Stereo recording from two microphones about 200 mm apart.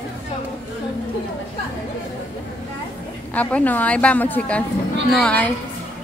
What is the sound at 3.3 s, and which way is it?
A woman's voice, 10° left (ahead or behind).